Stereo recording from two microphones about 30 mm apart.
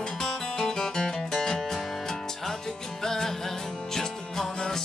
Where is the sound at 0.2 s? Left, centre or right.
Centre.